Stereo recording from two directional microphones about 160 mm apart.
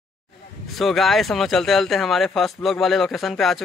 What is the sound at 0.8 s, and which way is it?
Speech, centre (ahead or behind).